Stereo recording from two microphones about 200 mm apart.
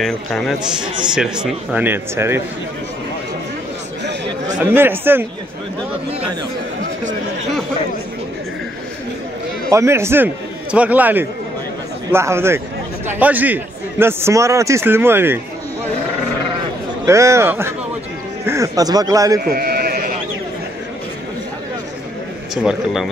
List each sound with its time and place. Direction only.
0.0 s speech: centre (ahead or behind)
4.6 s speech: 10° right (ahead or behind)
9.7 s a man's voice: 15° right (ahead or behind)
17.0 s speech: 15° right (ahead or behind)
19.4 s sheep: 50° right (ahead or behind)
22.5 s speech: centre (ahead or behind)